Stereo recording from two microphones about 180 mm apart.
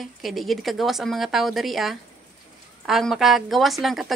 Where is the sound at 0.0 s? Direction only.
Centre (ahead or behind).